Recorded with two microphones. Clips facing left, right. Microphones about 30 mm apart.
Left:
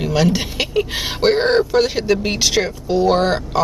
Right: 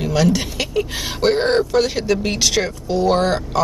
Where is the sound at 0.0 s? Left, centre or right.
Centre.